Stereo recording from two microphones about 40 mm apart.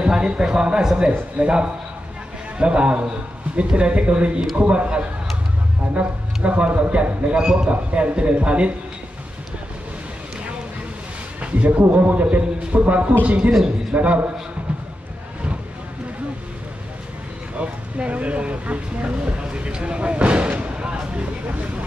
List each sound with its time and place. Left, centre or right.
0.1 s a man's voice: centre
11.4 s speech: right
11.9 s a man's voice: right
17.6 s speech: right
20.7 s a sound: right